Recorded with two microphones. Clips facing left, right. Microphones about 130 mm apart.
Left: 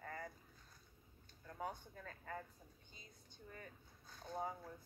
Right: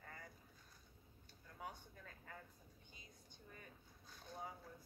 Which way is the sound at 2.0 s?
65° left (ahead or behind).